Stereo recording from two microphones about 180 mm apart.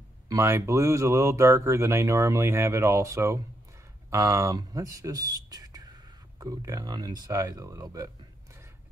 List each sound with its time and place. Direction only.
0.3 s speech: 15° right (ahead or behind)